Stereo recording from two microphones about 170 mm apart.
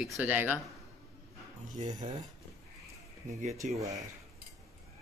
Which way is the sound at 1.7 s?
45° right (ahead or behind).